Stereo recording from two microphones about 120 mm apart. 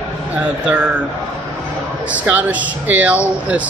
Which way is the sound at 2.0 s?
10° right (ahead or behind).